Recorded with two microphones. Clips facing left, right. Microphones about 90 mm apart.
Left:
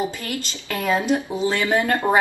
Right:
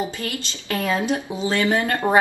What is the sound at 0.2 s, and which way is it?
A woman's voice, 20° left (ahead or behind).